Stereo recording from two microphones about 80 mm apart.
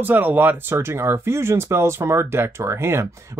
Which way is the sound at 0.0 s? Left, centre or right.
Right.